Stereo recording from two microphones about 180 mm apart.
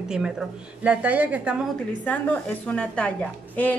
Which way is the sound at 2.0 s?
10° left (ahead or behind).